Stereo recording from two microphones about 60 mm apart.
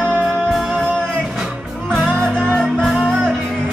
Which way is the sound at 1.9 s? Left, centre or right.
Right.